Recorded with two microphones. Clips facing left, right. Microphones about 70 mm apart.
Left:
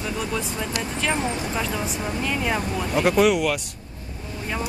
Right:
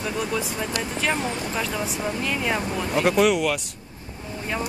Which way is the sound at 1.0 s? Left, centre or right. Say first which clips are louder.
Left 1 dB; centre.